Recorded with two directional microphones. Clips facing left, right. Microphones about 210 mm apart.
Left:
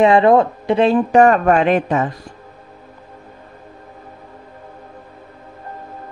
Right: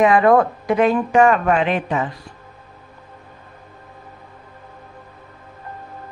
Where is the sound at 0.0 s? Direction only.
25° left (ahead or behind); by 2.1 s 45° left (ahead or behind).